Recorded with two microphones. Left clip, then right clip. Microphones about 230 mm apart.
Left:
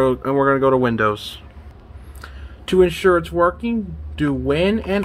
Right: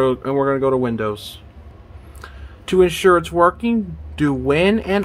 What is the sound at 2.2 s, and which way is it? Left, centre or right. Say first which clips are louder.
Speech: even; centre.